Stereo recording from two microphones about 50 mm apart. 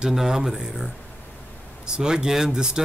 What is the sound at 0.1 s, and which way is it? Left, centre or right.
Speech, centre.